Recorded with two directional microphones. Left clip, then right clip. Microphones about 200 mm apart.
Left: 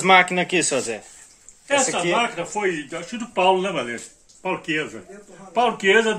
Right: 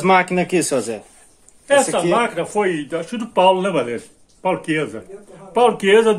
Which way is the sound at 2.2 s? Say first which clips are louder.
Right 4 dB; 60° right (ahead or behind).